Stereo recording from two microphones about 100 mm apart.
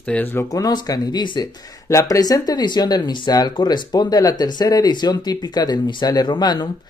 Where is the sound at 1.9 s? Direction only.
35° left (ahead or behind).